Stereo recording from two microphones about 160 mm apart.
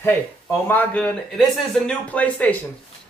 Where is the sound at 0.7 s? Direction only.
10° left (ahead or behind).